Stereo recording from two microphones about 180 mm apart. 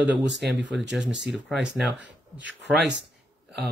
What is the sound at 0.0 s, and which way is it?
Speech, 80° right.